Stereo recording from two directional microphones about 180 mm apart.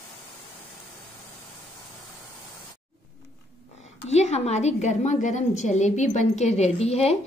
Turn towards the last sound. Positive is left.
turn(degrees=35)  # may be behind; listen again after turning